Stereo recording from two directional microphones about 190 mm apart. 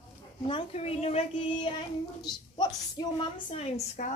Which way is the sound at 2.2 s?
20° left (ahead or behind).